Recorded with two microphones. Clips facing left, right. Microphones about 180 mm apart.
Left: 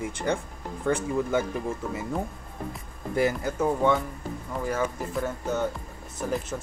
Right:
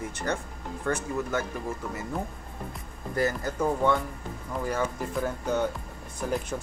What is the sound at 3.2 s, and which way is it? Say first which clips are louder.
Speech: left 2 dB; 10° left (ahead or behind).